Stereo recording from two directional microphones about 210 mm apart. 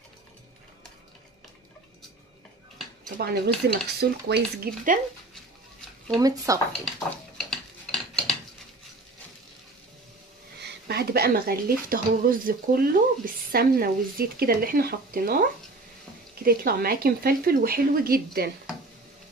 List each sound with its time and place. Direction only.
3.2 s speech: 50° right (ahead or behind)
6.2 s speech: 15° right (ahead or behind)
7.3 s cutlery: centre (ahead or behind)
10.6 s speech: 50° right (ahead or behind)
16.4 s speech: 45° right (ahead or behind)